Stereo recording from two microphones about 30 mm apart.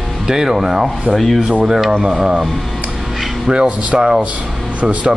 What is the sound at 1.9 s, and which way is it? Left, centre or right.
Speech, centre.